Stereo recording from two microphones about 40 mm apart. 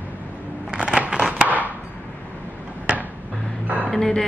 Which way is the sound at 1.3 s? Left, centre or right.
Right.